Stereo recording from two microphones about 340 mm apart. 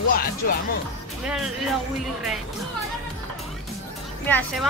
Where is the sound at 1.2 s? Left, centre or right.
Centre.